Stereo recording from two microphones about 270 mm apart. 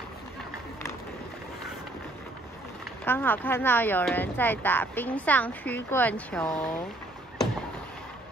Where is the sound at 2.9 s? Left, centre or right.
Centre.